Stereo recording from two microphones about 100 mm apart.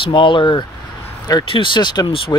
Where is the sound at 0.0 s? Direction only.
55° left (ahead or behind).